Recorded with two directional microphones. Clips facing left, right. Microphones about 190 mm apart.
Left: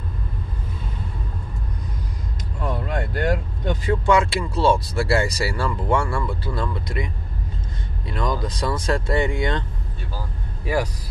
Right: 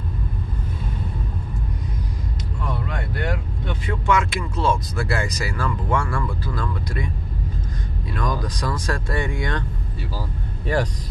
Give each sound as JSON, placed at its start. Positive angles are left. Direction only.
{"t": 2.9, "sound": "speech", "side_deg": 40}
{"t": 8.1, "sound": "speech", "side_deg": 25}
{"t": 10.6, "sound": "speech", "side_deg": 10}